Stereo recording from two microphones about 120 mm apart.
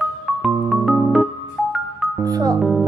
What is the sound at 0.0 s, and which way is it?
Music, centre (ahead or behind).